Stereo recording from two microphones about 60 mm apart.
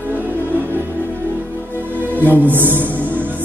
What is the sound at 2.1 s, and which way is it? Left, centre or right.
Music, right.